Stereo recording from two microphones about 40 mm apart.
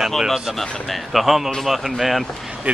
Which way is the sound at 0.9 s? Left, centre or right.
Centre.